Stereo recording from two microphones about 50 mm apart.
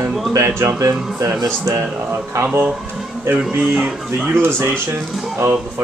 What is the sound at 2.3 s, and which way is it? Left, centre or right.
Speech, right.